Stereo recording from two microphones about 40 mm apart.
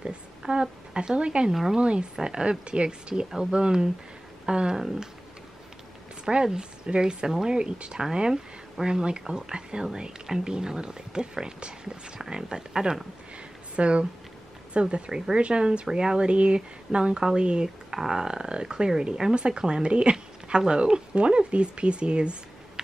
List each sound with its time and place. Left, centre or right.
0.4 s speech: right
1.5 s speech: centre
1.8 s speech: right
3.3 s speech: centre
6.2 s speech: centre
7.5 s speech: right
13.7 s speech: right
17.9 s speech: centre